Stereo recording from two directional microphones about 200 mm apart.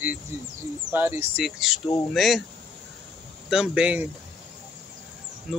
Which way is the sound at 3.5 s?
5° right (ahead or behind).